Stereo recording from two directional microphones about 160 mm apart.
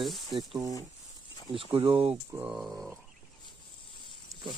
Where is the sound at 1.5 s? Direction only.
35° right (ahead or behind).